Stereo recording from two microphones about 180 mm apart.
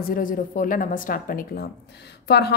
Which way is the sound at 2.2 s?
65° left (ahead or behind).